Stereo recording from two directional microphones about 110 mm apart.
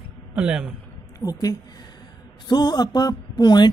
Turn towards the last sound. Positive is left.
turn(degrees=40)  # may be behind; listen again after turning